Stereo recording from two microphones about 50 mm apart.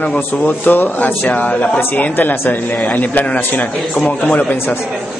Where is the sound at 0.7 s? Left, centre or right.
Left.